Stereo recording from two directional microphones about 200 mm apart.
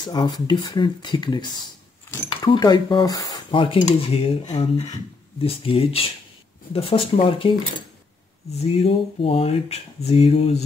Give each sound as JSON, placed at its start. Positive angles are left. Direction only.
{"t": 0.0, "sound": "speech", "side_deg": 20}
{"t": 8.7, "sound": "speech", "side_deg": 30}